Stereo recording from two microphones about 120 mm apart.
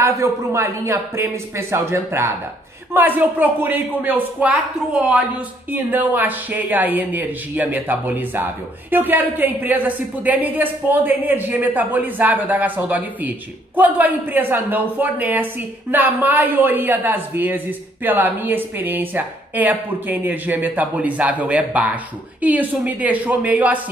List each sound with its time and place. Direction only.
0.0 s speech: 25° right (ahead or behind)